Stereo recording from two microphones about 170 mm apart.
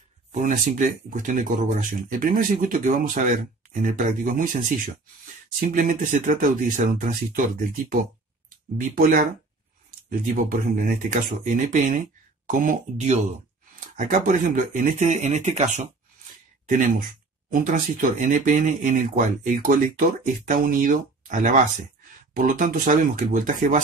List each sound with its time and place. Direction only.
0.3 s speech: 50° right (ahead or behind)
13.9 s speech: 55° right (ahead or behind)
16.6 s speech: 55° right (ahead or behind)